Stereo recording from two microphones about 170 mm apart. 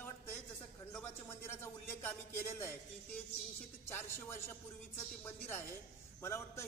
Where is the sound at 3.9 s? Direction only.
15° left (ahead or behind).